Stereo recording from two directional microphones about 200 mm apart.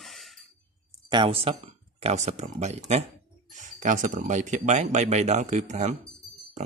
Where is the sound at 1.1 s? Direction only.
25° right (ahead or behind).